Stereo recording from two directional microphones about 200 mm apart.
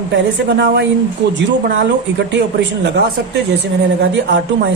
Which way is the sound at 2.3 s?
60° right (ahead or behind).